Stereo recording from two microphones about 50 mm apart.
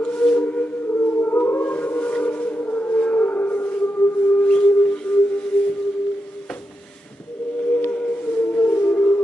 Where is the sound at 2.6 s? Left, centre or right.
Left.